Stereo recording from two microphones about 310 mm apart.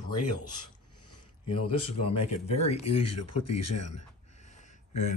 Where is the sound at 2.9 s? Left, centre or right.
Left.